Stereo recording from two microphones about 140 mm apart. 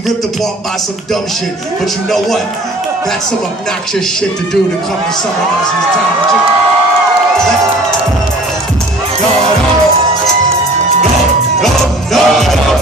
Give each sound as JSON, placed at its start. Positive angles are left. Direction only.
{"t": 11.6, "sound": "music", "side_deg": 0}